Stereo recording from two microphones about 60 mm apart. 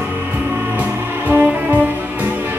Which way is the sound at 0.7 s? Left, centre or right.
Right.